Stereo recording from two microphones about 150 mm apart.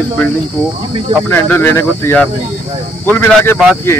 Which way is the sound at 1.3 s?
15° left (ahead or behind).